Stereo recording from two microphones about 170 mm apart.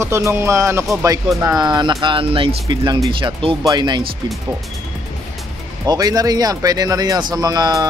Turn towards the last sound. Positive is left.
turn(degrees=-20)  # may be behind; listen again after turning